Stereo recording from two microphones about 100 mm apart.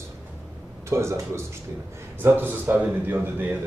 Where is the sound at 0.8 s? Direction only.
30° right (ahead or behind).